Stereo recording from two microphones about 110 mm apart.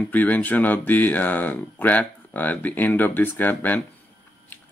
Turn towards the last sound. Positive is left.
turn(degrees=15)  # may be behind; listen again after turning